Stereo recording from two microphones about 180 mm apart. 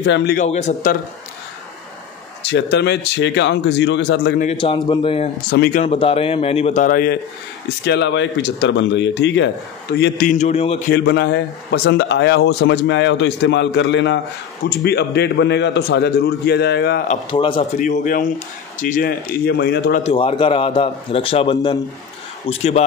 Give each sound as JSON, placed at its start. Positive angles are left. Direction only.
{"t": 0.0, "sound": "a man's voice", "side_deg": 65}
{"t": 0.4, "sound": "a man's voice", "side_deg": 40}
{"t": 2.4, "sound": "a man's voice", "side_deg": 70}
{"t": 4.4, "sound": "a man's voice", "side_deg": 35}
{"t": 5.5, "sound": "speech", "side_deg": 60}
{"t": 5.9, "sound": "a man's voice", "side_deg": 30}
{"t": 7.8, "sound": "a man's voice", "side_deg": 75}
{"t": 10.2, "sound": "a man's voice", "side_deg": 40}
{"t": 10.9, "sound": "a man's voice", "side_deg": 70}
{"t": 14.7, "sound": "a man's voice", "side_deg": 65}
{"t": 17.3, "sound": "a man's voice", "side_deg": 30}
{"t": 17.7, "sound": "speech", "side_deg": 50}
{"t": 20.0, "sound": "a man's voice", "side_deg": 35}